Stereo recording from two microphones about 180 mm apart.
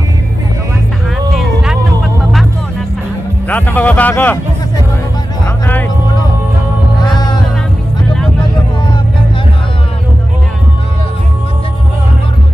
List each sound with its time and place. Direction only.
1.3 s a sound: 5° right (ahead or behind)
3.4 s speech: 10° left (ahead or behind)
7.1 s music: 25° left (ahead or behind)